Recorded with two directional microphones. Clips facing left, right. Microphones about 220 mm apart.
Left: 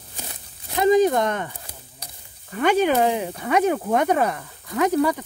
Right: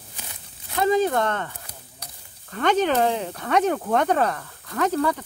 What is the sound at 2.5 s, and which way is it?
Speech, 10° left (ahead or behind).